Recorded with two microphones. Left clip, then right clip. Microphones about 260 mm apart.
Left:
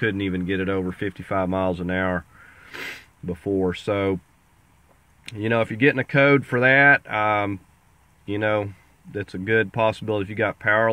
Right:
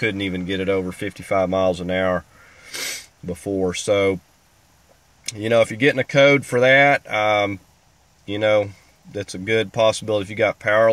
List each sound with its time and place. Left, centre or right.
0.0 s speech: centre
5.2 s speech: centre